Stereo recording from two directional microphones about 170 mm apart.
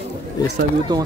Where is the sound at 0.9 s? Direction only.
25° right (ahead or behind).